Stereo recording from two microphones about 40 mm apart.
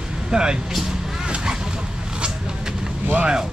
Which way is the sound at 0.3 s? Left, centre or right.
Right.